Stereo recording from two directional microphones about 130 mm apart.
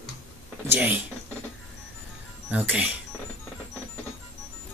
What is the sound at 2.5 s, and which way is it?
Music, 10° right (ahead or behind).